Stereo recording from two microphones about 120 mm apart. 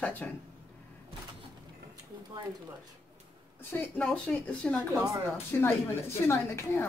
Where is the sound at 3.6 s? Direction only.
15° left (ahead or behind).